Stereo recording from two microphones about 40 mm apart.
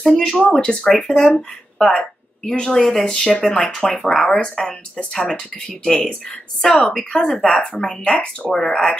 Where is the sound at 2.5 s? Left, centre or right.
Centre.